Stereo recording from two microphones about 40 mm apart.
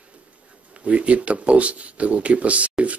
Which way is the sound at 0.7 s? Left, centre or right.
Right.